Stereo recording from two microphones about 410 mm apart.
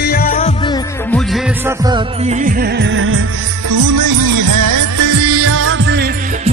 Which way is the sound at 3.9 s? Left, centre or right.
Right.